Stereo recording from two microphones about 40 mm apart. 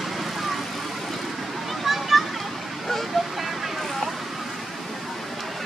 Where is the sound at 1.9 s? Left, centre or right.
Centre.